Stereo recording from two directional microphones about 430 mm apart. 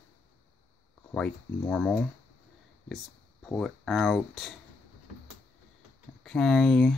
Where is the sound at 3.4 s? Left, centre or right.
Centre.